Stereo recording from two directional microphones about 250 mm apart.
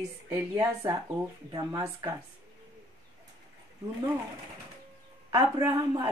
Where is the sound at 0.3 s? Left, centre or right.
Centre.